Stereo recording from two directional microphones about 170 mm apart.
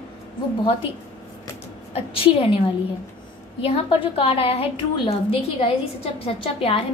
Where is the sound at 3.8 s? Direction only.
30° left (ahead or behind).